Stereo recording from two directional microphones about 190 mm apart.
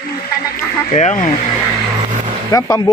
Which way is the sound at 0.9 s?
35° left (ahead or behind).